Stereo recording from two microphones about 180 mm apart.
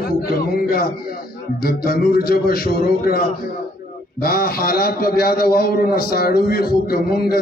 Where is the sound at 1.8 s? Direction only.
55° left (ahead or behind).